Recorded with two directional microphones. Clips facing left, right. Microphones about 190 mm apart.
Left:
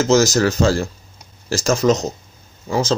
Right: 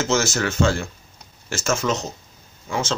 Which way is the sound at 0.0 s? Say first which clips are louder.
Left 7 dB; 40° left (ahead or behind).